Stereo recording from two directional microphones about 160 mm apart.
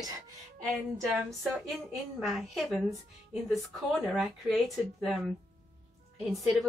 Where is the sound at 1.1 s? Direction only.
Centre (ahead or behind).